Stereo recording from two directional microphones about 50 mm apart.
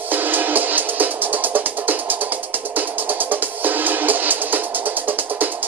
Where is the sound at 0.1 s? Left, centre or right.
Right.